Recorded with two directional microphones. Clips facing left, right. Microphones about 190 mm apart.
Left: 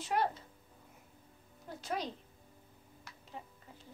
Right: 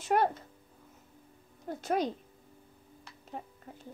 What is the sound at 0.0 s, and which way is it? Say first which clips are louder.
Speech: right 6 dB; 50° right (ahead or behind).